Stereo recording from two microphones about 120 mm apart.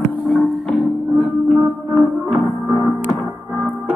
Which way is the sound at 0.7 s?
15° left (ahead or behind).